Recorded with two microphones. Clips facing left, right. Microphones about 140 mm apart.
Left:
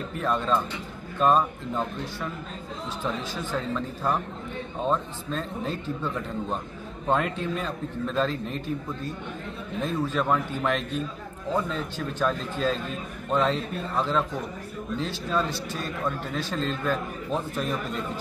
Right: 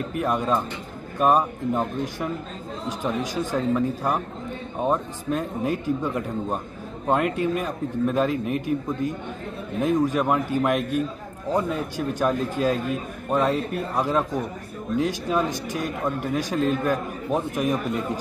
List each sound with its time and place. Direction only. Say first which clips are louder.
0.2 s a man's voice: right 2 dB; 10° right (ahead or behind)